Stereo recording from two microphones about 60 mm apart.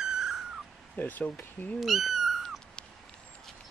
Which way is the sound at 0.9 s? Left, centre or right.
Left.